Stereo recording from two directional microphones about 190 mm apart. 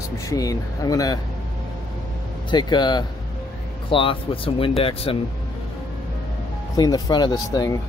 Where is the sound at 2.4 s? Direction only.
25° left (ahead or behind).